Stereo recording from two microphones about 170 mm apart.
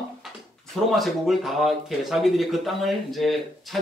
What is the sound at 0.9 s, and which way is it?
Speech, centre (ahead or behind).